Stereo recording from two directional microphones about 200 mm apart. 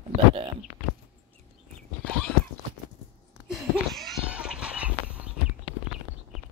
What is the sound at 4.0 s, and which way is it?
Goat, centre (ahead or behind).